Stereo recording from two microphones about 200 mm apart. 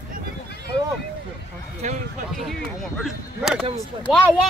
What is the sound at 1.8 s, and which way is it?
Speech, 35° right (ahead or behind).